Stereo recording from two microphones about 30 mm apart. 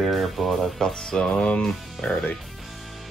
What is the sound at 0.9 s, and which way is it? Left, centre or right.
Music, left.